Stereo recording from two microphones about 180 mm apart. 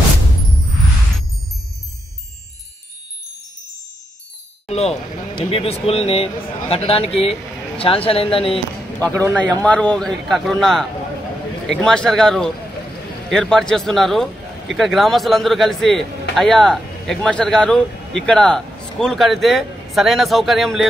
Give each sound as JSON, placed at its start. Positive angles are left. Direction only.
{"t": 4.6, "sound": "speech", "side_deg": 35}
{"t": 9.0, "sound": "speech", "side_deg": 10}